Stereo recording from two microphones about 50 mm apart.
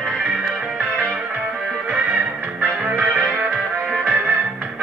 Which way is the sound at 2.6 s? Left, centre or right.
Right.